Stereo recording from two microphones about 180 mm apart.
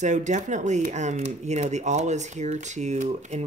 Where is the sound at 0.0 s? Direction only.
40° right (ahead or behind).